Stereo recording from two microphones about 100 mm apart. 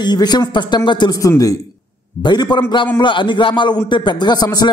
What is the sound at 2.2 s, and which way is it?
A man's voice, 45° left (ahead or behind).